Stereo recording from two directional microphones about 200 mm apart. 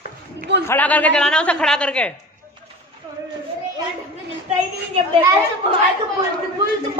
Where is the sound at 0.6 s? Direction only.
10° left (ahead or behind).